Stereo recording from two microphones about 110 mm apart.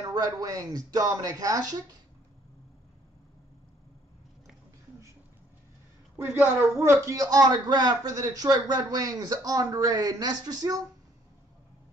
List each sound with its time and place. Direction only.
0.0 s a man's voice: 35° right (ahead or behind)
6.1 s a man's voice: 20° right (ahead or behind); by 10.8 s 35° right (ahead or behind)